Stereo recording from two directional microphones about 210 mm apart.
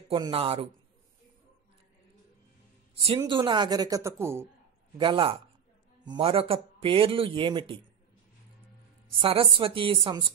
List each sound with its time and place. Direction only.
0.1 s speech: 25° right (ahead or behind)
2.9 s a sound: 25° right (ahead or behind)
3.2 s speech: 20° right (ahead or behind)
4.9 s speech: 25° right (ahead or behind)
9.1 s speech: 25° right (ahead or behind)